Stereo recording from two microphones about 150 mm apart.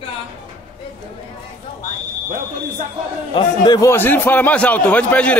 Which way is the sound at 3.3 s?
30° left (ahead or behind).